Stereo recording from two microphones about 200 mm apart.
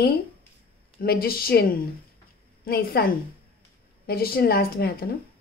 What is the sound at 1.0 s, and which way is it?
A woman's voice, 50° left (ahead or behind).